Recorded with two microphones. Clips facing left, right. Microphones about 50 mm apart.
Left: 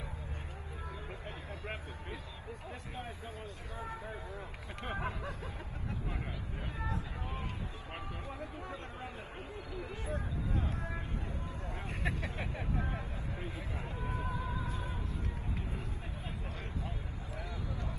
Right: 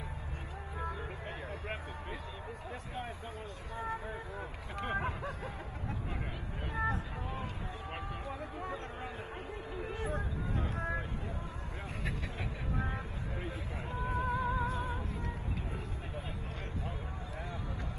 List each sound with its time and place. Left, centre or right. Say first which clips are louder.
3.7 s speech: right 5 dB; right
6.7 s speech: right 7 dB; right
12.7 s vehicle: right 1 dB; right
13.9 s music: right 7 dB; right